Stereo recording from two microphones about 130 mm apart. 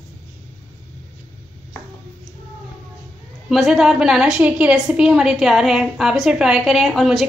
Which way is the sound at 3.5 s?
Centre (ahead or behind).